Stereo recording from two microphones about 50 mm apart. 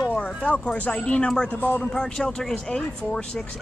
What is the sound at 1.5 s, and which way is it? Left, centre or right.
Speech, left.